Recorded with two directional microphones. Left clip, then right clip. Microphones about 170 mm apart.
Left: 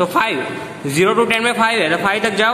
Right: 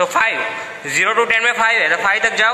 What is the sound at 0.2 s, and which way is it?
A man's voice, 10° right (ahead or behind).